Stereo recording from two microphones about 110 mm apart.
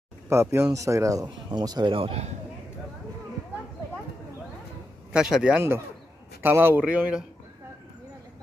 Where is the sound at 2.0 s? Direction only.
65° right (ahead or behind).